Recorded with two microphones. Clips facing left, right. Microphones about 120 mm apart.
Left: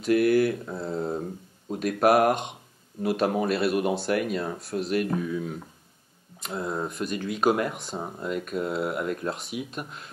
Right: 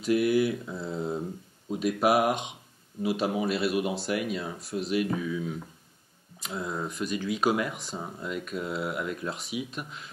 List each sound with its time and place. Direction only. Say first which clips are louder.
0.0 s speech: left 3 dB; 50° left (ahead or behind)
0.9 s speech: left 2 dB; centre (ahead or behind)
1.8 s speech: left 3 dB; 45° left (ahead or behind)
6.4 s speech: left 3 dB; centre (ahead or behind)
7.1 s speech: left 2 dB; 45° left (ahead or behind)
7.7 s speech: left 3 dB; centre (ahead or behind)
8.0 s speech: left 5 dB; 45° left (ahead or behind)
9.3 s speech: left 2 dB; centre (ahead or behind)
9.8 s speech: left 2 dB; 45° left (ahead or behind)